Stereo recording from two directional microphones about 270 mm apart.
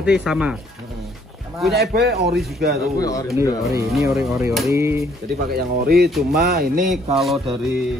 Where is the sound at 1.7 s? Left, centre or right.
Right.